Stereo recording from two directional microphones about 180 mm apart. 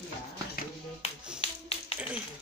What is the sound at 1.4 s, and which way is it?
Tap, 30° left (ahead or behind).